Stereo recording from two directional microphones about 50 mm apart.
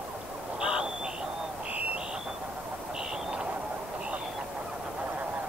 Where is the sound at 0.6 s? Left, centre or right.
Centre.